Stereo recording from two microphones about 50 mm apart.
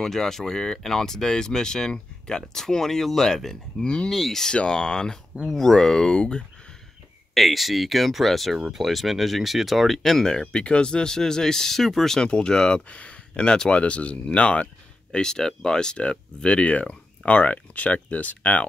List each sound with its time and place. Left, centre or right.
0.0 s speech: centre
3.8 s speech: centre
4.1 s speech: centre
7.3 s speech: centre
12.3 s speech: centre
15.1 s speech: centre; by 18.7 s left